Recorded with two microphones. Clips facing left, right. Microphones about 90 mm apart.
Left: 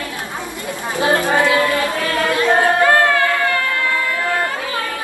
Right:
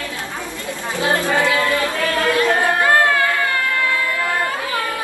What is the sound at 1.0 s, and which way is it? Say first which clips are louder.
Livestock: left 3 dB; 20° left (ahead or behind).